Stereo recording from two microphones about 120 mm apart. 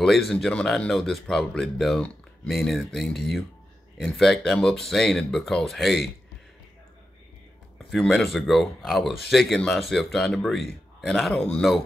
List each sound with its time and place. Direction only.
0.0 s speech: 5° left (ahead or behind)
7.9 s speech: centre (ahead or behind)